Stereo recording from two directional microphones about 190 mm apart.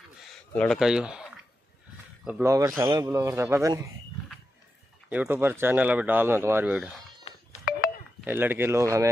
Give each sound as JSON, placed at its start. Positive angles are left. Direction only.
{"t": 0.6, "sound": "speech", "side_deg": 0}
{"t": 5.1, "sound": "speech", "side_deg": -10}
{"t": 8.3, "sound": "speech", "side_deg": -10}